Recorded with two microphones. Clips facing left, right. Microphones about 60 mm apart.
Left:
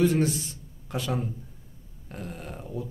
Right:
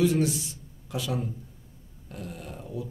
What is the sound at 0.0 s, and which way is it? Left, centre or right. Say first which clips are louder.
A man's voice: left 1 dB; left.